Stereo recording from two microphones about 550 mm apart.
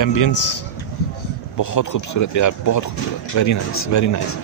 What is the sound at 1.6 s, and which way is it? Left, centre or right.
A man's voice, left.